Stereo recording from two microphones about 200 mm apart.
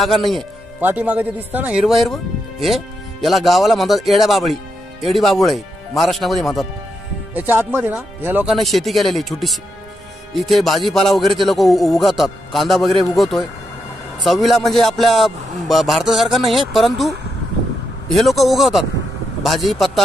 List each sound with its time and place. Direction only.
0.0 s a man's voice: centre (ahead or behind)
7.3 s a man's voice: 10° right (ahead or behind)
18.1 s a man's voice: centre (ahead or behind)